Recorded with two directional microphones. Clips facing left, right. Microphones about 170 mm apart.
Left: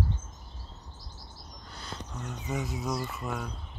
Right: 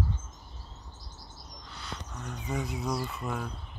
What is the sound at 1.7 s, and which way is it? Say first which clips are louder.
Cricket: even; 40° left (ahead or behind).